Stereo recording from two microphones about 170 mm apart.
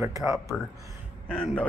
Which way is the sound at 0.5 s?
15° left (ahead or behind).